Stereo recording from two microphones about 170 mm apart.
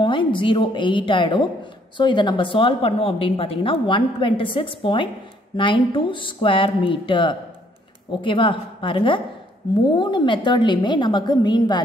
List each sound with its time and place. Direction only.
0.0 s a woman's voice: 30° left (ahead or behind)